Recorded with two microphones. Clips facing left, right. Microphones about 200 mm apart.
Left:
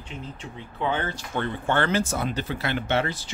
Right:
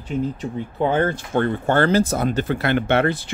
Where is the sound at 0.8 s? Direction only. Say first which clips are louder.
Right 8 dB; 45° right (ahead or behind).